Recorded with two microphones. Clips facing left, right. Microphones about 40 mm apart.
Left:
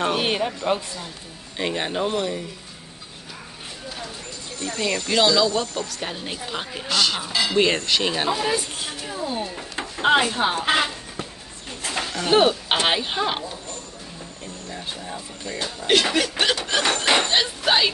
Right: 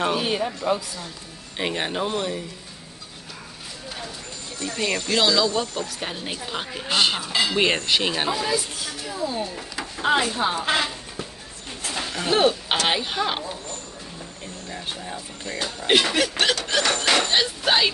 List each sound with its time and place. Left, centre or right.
0.2 s speech: left
1.6 s speech: centre
4.7 s speech: centre
6.9 s speech: right
7.2 s speech: centre
7.5 s speech: centre
8.1 s speech: centre
8.5 s speech: left
12.3 s speech: centre
15.0 s speech: centre
16.1 s speech: centre
16.7 s a sound: centre
17.3 s speech: centre